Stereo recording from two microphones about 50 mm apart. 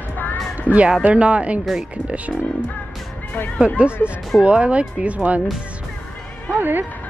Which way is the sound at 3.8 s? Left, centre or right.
Right.